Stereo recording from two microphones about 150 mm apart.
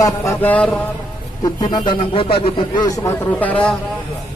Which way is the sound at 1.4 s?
25° left (ahead or behind).